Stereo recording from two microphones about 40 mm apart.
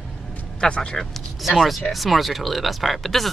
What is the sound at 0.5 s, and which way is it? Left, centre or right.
Speech, left.